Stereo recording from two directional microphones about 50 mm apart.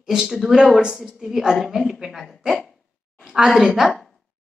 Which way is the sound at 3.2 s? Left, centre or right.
Centre.